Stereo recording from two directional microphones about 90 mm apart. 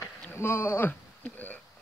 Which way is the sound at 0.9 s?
15° left (ahead or behind).